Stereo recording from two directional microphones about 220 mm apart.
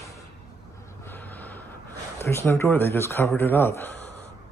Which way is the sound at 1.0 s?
10° left (ahead or behind).